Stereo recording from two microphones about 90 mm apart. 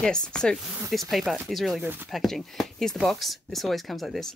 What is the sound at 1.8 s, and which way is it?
Speech, 25° right (ahead or behind).